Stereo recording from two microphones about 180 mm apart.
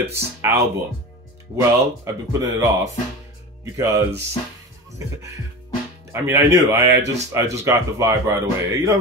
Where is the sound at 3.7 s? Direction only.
20° right (ahead or behind).